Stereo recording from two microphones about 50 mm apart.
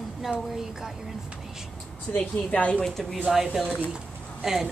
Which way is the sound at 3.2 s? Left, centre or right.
Centre.